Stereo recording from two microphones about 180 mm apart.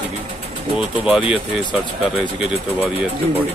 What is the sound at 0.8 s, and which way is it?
Speech, 5° right (ahead or behind).